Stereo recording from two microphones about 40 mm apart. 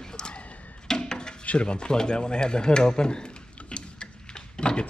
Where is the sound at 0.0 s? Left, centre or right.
Centre.